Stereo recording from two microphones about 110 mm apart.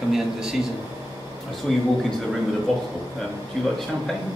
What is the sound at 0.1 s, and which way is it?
Speech, 5° right (ahead or behind).